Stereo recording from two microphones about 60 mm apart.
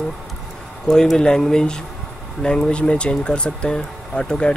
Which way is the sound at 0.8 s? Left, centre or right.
Centre.